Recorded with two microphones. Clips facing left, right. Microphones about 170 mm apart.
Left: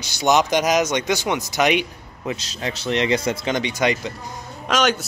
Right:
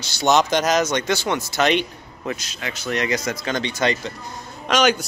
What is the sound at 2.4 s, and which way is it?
Speech, 30° left (ahead or behind).